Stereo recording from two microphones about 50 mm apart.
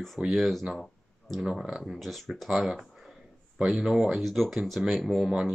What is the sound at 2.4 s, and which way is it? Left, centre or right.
Speech, centre.